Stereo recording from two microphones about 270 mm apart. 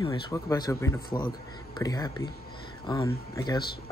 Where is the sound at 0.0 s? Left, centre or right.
Centre.